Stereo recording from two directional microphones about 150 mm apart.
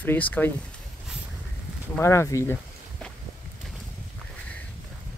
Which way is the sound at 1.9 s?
20° left (ahead or behind).